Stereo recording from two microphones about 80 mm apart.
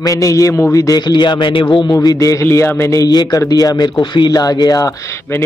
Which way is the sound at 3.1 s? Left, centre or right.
Left.